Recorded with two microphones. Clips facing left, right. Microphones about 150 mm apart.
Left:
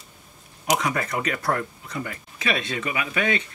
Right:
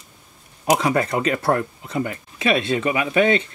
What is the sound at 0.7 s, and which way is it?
Speech, 30° right (ahead or behind).